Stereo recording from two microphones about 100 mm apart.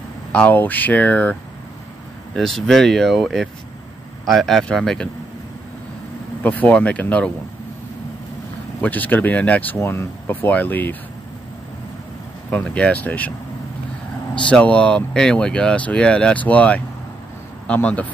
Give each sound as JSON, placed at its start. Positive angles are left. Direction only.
{"t": 0.3, "sound": "speech", "side_deg": 15}
{"t": 2.3, "sound": "speech", "side_deg": 5}
{"t": 6.4, "sound": "speech", "side_deg": 15}
{"t": 8.8, "sound": "speech", "side_deg": 15}
{"t": 12.6, "sound": "speech", "side_deg": 10}
{"t": 14.3, "sound": "speech", "side_deg": 10}